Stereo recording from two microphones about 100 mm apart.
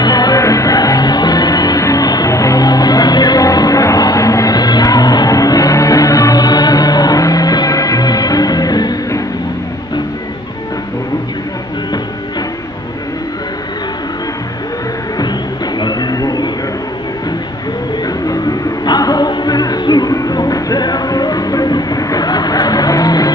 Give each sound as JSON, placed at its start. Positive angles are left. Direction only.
{"t": 0.0, "sound": "music", "side_deg": 40}
{"t": 15.8, "sound": "a sound", "side_deg": 45}
{"t": 18.9, "sound": "music", "side_deg": 40}